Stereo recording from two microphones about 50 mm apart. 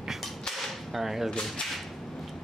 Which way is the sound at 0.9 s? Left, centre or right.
Centre.